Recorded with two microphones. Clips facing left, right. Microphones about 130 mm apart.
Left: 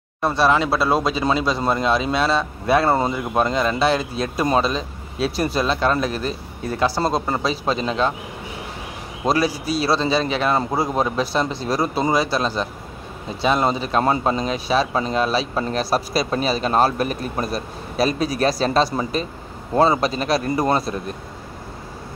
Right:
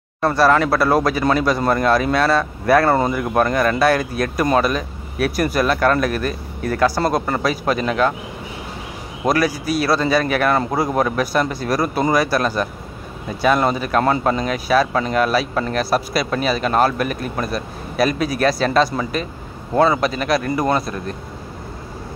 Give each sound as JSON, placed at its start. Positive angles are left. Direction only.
{"t": 0.2, "sound": "speech", "side_deg": 20}
{"t": 9.3, "sound": "speech", "side_deg": 30}